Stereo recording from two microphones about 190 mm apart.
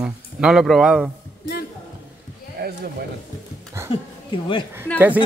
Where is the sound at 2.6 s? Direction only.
50° right (ahead or behind).